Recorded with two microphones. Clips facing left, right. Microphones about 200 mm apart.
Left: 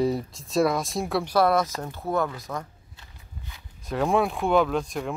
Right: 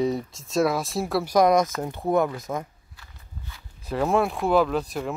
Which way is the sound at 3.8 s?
Centre (ahead or behind).